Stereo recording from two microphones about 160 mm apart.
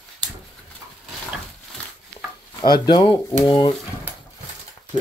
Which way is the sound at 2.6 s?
25° left (ahead or behind).